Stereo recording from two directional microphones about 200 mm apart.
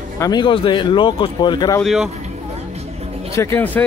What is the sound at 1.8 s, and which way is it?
Speech, centre (ahead or behind).